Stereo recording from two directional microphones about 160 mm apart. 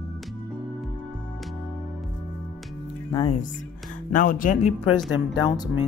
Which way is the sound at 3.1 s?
30° left (ahead or behind).